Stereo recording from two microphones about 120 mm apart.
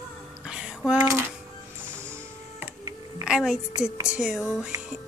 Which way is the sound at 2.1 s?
20° right (ahead or behind).